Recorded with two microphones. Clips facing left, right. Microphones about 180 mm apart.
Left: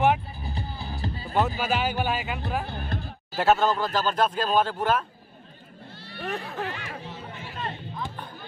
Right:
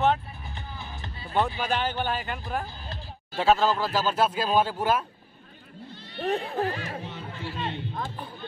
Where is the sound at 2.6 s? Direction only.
60° left (ahead or behind).